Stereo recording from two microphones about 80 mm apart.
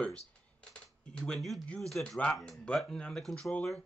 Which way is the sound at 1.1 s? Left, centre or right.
Centre.